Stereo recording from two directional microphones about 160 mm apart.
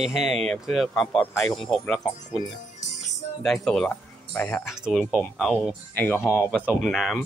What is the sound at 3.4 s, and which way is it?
Speech, 5° left (ahead or behind).